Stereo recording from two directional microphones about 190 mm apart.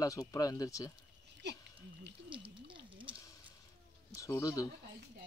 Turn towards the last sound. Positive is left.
turn(degrees=15)  # may be behind; listen again after turning